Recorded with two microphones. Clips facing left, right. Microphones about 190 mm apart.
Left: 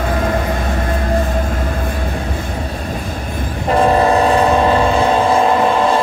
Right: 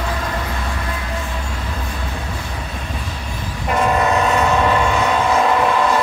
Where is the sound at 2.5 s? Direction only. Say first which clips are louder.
Left 6 dB; 40° left (ahead or behind).